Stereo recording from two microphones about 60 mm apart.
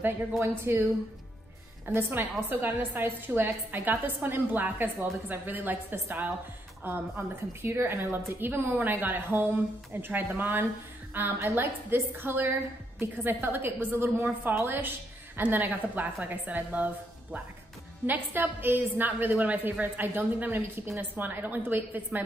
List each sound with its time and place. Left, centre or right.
0.7 s a woman's voice: right
1.9 s a woman's voice: right
11.3 s a woman's voice: right